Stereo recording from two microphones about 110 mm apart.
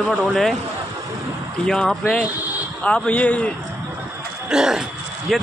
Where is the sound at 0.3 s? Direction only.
5° left (ahead or behind).